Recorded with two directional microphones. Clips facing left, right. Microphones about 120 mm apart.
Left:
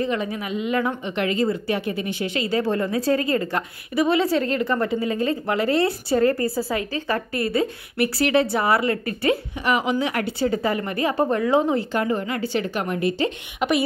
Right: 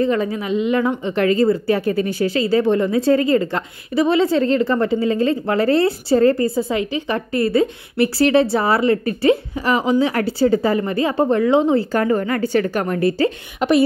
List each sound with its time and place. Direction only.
0.0 s a woman's voice: 35° right (ahead or behind)
11.9 s a woman's voice: 45° right (ahead or behind)